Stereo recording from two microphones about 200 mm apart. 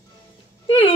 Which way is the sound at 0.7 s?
25° left (ahead or behind).